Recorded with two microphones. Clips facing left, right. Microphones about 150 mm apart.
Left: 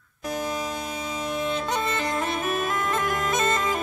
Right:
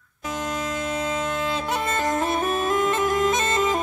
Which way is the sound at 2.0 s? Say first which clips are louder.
Right 4 dB; 45° right (ahead or behind).